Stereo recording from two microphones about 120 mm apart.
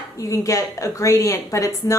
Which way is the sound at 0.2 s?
25° left (ahead or behind).